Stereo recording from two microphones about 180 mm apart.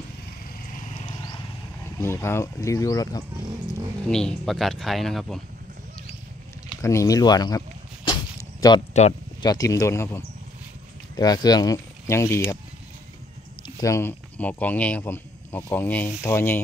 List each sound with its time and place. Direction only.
2.0 s speech: 15° left (ahead or behind)
4.1 s speech: 5° left (ahead or behind)
6.8 s a sound: 15° left (ahead or behind)
9.4 s speech: 20° left (ahead or behind)
13.7 s speech: 15° left (ahead or behind)